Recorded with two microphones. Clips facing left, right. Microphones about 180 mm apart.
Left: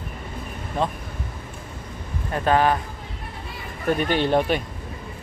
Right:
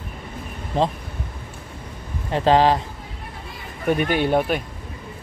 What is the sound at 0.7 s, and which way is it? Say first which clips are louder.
Speech: right 4 dB; 25° right (ahead or behind).